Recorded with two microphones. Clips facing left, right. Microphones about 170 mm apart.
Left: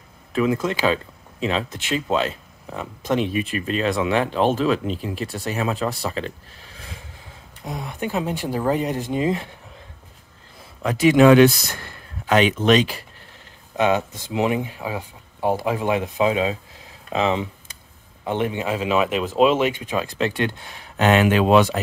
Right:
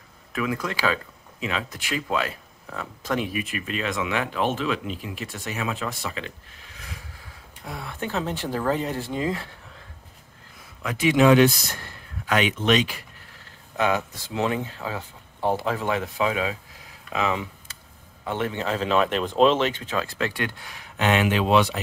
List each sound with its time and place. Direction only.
0.3 s speech: 25° left (ahead or behind)
7.6 s speech: 20° left (ahead or behind)
10.8 s speech: 35° left (ahead or behind)
11.1 s speech: 65° left (ahead or behind)
12.3 s speech: 35° left (ahead or behind)
13.7 s speech: 20° left (ahead or behind)
21.0 s speech: 45° left (ahead or behind)